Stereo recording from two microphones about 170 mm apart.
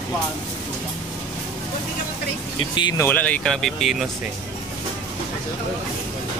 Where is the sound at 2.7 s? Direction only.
25° left (ahead or behind).